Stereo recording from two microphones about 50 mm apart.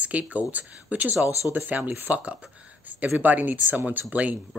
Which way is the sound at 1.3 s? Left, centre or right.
Left.